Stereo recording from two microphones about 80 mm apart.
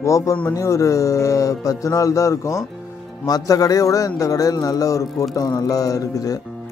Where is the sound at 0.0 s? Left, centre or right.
Left.